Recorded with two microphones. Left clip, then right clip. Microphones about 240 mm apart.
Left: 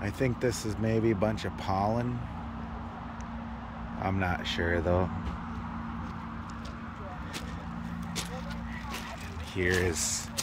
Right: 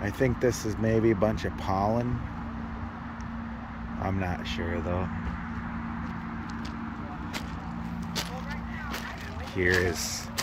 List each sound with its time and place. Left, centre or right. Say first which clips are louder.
0.0 s speech: right 4 dB; centre
4.0 s speech: left 1 dB; centre
9.6 s speech: right 3 dB; centre